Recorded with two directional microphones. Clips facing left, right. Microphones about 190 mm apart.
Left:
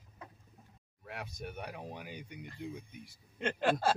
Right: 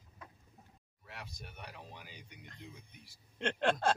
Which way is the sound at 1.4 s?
55° left (ahead or behind).